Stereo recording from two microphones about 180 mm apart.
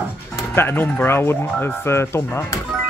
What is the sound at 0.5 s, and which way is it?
Speech, 10° left (ahead or behind).